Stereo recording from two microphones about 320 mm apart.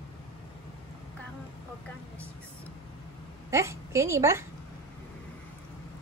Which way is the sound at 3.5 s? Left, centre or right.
Centre.